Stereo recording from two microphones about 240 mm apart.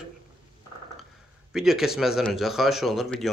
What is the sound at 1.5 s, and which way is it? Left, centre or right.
Speech, centre.